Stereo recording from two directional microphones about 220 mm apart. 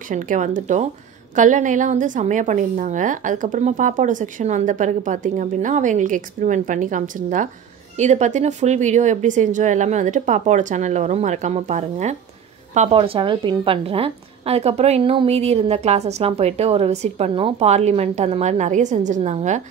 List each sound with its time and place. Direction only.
0.1 s a woman's voice: 35° right (ahead or behind)